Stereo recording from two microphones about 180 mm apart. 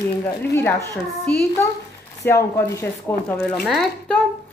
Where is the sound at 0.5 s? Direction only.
10° left (ahead or behind).